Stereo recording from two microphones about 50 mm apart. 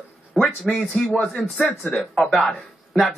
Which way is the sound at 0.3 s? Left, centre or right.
Centre.